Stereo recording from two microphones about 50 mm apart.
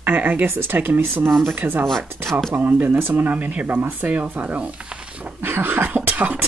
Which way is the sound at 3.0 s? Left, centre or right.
Right.